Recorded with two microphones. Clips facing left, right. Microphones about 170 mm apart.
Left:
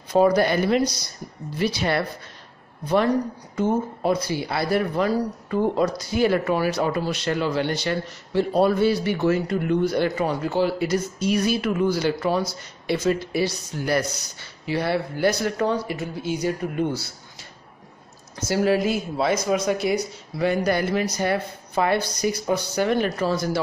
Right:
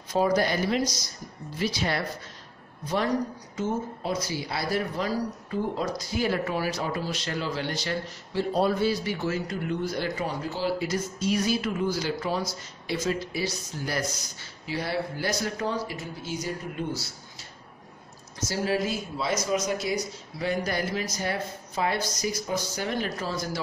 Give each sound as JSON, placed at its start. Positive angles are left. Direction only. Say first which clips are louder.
{"t": 0.1, "sound": "speech", "louder": "left 6 dB", "side_deg": 60}
{"t": 18.5, "sound": "speech", "louder": "left 7 dB", "side_deg": 60}